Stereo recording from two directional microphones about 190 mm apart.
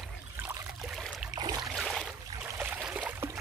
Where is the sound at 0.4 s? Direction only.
10° right (ahead or behind).